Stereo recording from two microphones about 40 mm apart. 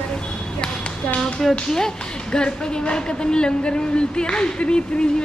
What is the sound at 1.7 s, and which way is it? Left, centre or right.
A woman's voice, centre.